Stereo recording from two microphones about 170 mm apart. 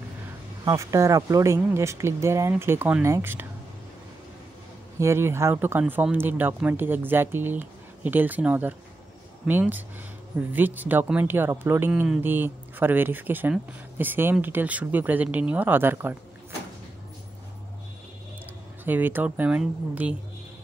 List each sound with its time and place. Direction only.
0.7 s speech: 20° right (ahead or behind)
4.9 s speech: 15° right (ahead or behind)
18.9 s speech: 10° right (ahead or behind)